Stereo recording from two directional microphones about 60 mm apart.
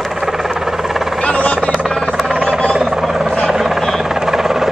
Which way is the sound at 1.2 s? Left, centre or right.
Centre.